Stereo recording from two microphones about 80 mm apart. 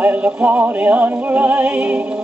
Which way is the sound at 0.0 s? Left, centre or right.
Centre.